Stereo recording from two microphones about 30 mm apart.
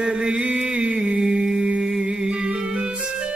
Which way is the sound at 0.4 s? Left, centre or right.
Right.